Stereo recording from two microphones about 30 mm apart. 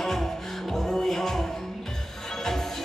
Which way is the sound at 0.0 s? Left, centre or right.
Centre.